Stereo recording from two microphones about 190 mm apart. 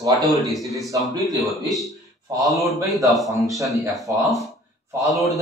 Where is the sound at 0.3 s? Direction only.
Centre (ahead or behind).